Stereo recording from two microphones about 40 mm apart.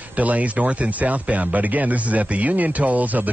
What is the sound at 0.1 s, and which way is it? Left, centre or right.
Speech, right.